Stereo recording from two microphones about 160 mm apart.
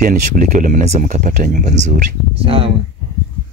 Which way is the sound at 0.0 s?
50° right (ahead or behind).